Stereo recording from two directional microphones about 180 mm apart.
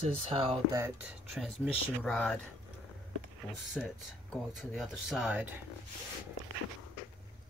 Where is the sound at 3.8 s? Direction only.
5° left (ahead or behind).